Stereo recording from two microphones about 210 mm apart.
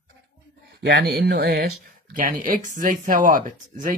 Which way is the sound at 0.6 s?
55° right (ahead or behind).